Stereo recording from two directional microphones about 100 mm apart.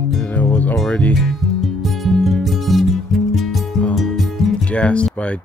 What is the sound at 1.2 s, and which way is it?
Music, centre (ahead or behind).